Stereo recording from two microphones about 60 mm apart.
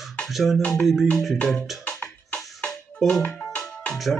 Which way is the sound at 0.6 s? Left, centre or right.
Left.